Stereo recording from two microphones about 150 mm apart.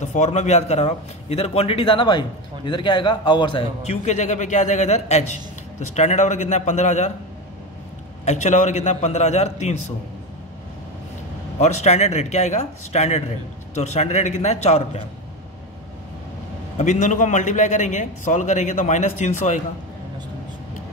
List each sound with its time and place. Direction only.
0.0 s a man's voice: 50° left (ahead or behind); by 3.6 s 30° left (ahead or behind)
3.8 s a man's voice: 50° left (ahead or behind)
8.3 s a man's voice: 55° left (ahead or behind)
11.6 s a man's voice: 50° left (ahead or behind)
16.7 s a man's voice: 55° left (ahead or behind)